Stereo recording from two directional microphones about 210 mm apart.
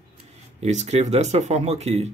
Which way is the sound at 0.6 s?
30° right (ahead or behind).